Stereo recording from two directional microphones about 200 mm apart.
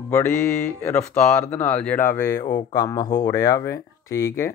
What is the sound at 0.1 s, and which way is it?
Speech, 5° left (ahead or behind).